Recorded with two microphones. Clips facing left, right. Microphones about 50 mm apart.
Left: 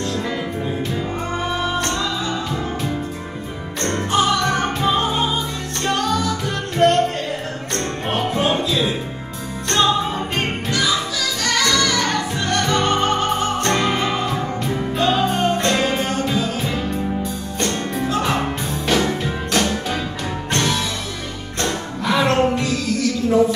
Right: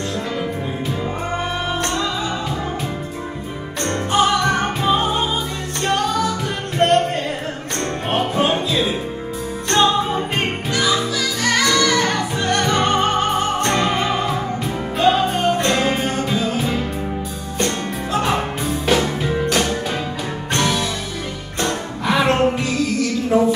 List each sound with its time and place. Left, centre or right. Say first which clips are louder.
1.4 s music: left 2 dB; centre
4.1 s music: right 2 dB; centre
6.8 s music: even; right
7.7 s music: right 2 dB; centre
23.3 s a sound: even; centre